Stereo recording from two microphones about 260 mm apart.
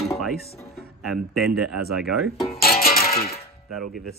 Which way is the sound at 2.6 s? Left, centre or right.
Left.